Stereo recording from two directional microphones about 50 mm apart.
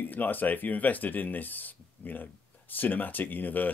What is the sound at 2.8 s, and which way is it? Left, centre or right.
Speech, left.